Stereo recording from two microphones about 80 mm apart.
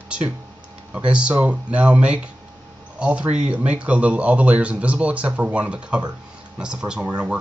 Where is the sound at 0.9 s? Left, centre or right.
Centre.